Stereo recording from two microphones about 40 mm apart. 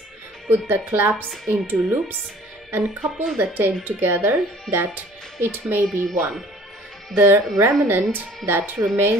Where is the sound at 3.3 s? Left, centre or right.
Right.